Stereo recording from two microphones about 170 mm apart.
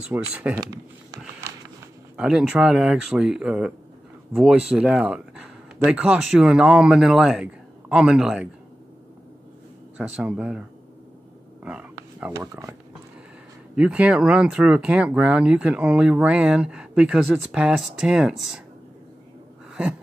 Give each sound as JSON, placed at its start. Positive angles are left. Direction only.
{"t": 0.3, "sound": "speech", "side_deg": -10}
{"t": 2.1, "sound": "speech", "side_deg": -5}
{"t": 9.9, "sound": "speech", "side_deg": -5}
{"t": 11.6, "sound": "a sound", "side_deg": -5}
{"t": 12.4, "sound": "speech", "side_deg": -15}
{"t": 13.7, "sound": "speech", "side_deg": -5}
{"t": 19.7, "sound": "a sound", "side_deg": -5}